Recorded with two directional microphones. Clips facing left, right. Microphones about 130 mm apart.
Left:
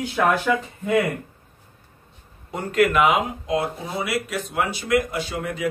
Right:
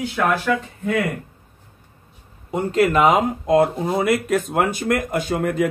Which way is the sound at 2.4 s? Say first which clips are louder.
Right 2 dB; 25° right (ahead or behind).